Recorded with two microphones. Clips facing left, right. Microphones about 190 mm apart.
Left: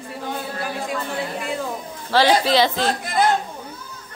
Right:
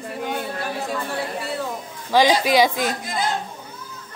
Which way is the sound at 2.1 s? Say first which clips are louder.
Even; 15° right (ahead or behind).